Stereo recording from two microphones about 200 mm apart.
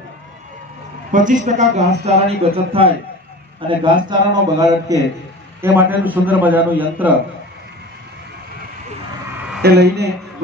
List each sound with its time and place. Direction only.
1.1 s a man's voice: 40° right (ahead or behind); by 7.2 s 10° right (ahead or behind)
9.6 s speech: 55° right (ahead or behind)